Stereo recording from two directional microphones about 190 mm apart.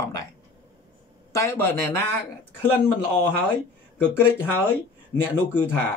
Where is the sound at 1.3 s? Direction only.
15° left (ahead or behind).